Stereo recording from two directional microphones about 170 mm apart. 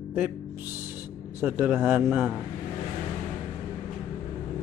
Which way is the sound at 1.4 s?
10° right (ahead or behind).